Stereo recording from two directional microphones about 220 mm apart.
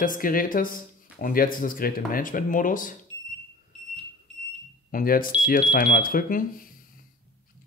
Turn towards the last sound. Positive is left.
turn(degrees=40)  # may be behind; listen again after turning